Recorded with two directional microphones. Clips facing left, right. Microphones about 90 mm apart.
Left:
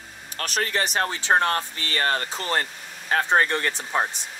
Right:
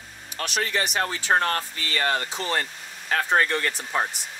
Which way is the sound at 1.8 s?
40° left (ahead or behind).